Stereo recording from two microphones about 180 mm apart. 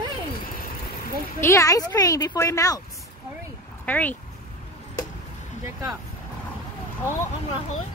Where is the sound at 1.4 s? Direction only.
15° left (ahead or behind).